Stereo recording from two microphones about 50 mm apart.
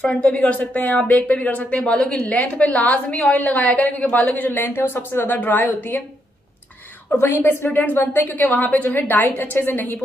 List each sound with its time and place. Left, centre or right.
0.0 s speech: left
7.2 s speech: left